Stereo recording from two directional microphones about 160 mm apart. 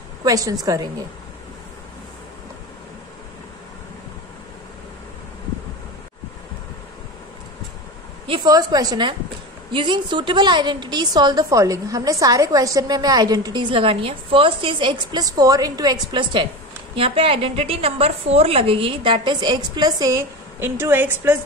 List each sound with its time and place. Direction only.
0.2 s a woman's voice: 20° right (ahead or behind)
8.3 s a woman's voice: 25° right (ahead or behind)